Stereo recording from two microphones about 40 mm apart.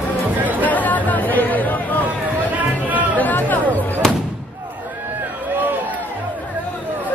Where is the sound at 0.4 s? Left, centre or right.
Right.